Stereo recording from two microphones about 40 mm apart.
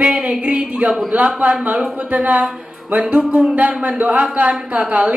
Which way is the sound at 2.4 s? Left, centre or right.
Right.